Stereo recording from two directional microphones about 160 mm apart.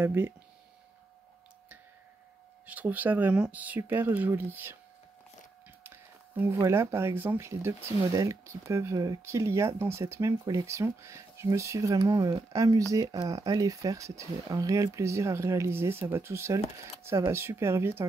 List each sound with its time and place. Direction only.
0.0 s speech: 15° right (ahead or behind)
2.6 s speech: 10° right (ahead or behind)
5.9 s speech: 15° right (ahead or behind)